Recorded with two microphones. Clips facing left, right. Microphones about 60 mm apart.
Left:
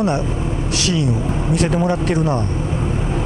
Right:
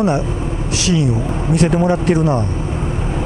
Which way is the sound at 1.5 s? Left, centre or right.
Right.